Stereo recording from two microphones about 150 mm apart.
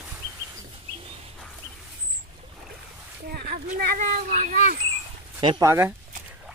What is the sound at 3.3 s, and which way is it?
Speech, 85° right.